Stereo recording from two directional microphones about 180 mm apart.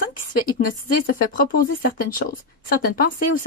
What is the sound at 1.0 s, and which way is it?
Speech, 50° left (ahead or behind).